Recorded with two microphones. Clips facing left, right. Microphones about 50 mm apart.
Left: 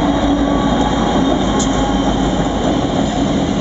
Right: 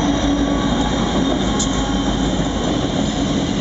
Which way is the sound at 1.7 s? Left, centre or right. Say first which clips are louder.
Left 4 dB; left.